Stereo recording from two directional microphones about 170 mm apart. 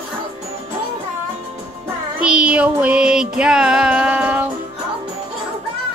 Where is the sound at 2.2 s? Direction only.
5° right (ahead or behind).